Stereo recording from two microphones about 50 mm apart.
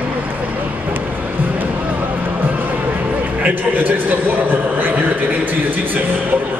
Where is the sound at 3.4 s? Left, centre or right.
Right.